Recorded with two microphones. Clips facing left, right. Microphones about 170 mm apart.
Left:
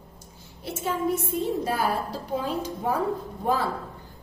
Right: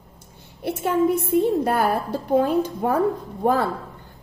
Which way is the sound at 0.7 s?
60° right (ahead or behind).